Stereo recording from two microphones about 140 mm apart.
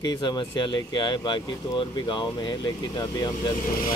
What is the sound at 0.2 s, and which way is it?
Speech, 30° left (ahead or behind).